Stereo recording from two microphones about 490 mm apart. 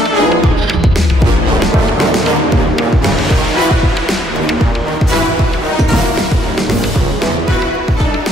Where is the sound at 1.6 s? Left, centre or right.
Centre.